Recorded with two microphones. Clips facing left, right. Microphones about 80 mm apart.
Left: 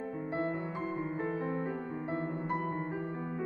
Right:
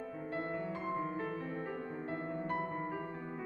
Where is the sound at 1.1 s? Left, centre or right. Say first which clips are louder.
Left 5 dB; left.